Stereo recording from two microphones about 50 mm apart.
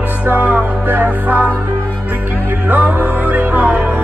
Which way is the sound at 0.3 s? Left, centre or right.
Right.